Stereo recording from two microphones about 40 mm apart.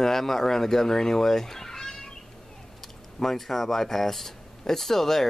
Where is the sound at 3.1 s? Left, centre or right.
Centre.